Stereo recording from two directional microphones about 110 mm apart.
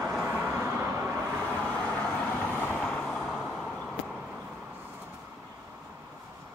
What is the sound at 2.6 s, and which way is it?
Vehicle, 15° left (ahead or behind).